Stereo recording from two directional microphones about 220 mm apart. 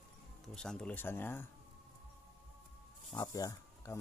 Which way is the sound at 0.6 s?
5° left (ahead or behind).